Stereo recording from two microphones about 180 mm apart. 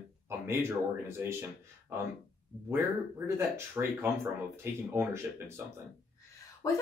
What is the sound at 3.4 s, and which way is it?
Speech, 15° right (ahead or behind).